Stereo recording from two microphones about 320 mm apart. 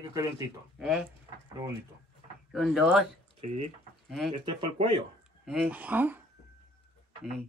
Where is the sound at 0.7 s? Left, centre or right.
Centre.